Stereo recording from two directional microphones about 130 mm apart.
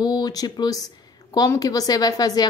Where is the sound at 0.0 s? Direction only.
30° left (ahead or behind).